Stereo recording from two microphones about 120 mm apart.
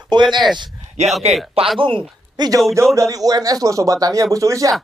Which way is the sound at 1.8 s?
45° right (ahead or behind).